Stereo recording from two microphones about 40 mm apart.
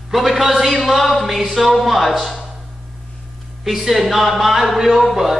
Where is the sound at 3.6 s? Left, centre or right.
Centre.